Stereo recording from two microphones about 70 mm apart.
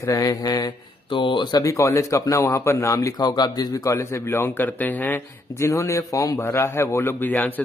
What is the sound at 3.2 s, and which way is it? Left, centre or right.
Speech, left.